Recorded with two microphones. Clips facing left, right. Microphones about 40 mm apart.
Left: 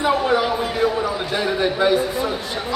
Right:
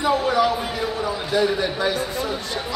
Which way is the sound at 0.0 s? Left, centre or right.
Centre.